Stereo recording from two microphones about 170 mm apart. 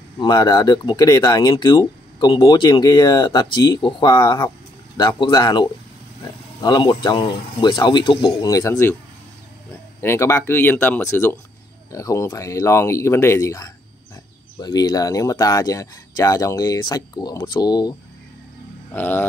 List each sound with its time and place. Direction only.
0.2 s speech: 25° left (ahead or behind)
9.9 s speech: 15° left (ahead or behind)
18.9 s speech: 10° left (ahead or behind)